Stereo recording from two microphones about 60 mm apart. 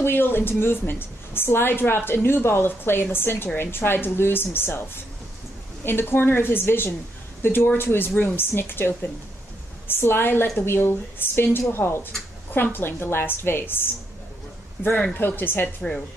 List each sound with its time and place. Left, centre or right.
0.0 s a woman's voice: left
5.9 s a woman's voice: left
14.8 s a woman's voice: left